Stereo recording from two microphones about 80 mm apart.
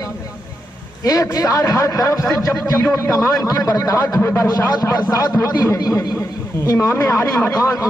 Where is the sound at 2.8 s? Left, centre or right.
Left.